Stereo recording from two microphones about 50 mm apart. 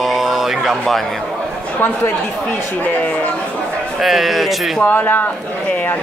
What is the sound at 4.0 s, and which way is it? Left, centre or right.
Speech, centre.